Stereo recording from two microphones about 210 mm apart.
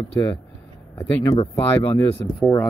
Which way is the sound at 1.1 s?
15° left (ahead or behind).